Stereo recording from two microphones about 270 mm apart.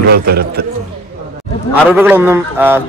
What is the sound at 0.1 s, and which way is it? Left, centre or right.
Speech, right.